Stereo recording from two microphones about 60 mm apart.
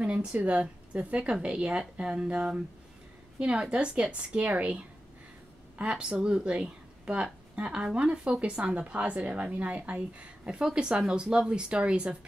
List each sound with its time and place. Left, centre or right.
0.0 s a woman's voice: centre